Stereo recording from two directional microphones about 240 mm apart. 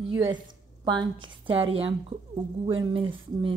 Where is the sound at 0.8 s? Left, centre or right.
Centre.